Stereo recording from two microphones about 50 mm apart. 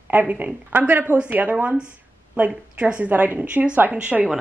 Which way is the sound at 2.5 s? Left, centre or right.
Right.